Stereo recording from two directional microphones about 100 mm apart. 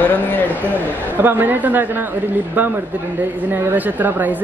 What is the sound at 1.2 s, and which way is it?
Speech, 20° right (ahead or behind).